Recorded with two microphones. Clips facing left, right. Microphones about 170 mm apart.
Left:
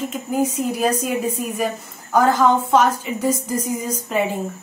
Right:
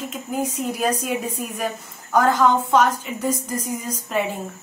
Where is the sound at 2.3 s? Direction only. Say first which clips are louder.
Left 1 dB; 5° left (ahead or behind).